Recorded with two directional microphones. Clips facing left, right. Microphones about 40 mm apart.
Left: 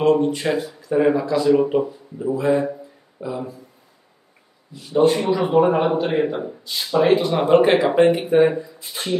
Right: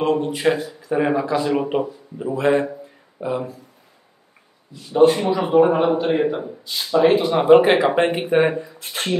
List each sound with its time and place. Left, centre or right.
0.0 s speech: centre; by 1.9 s right
2.3 s speech: right
4.9 s speech: centre; by 8.5 s right
8.7 s speech: right